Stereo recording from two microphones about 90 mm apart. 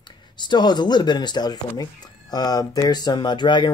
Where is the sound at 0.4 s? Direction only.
55° left (ahead or behind).